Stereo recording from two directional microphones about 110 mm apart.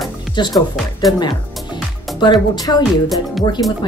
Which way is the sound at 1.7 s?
45° left (ahead or behind).